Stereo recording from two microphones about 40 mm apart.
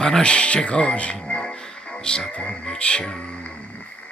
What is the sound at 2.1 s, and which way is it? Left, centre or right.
Music, left.